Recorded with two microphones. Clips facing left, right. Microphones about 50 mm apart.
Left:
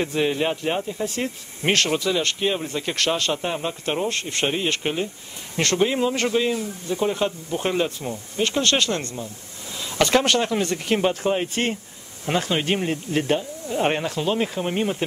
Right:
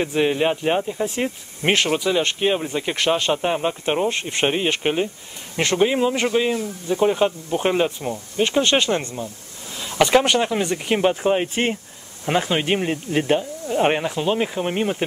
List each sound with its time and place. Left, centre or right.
0.0 s speech: centre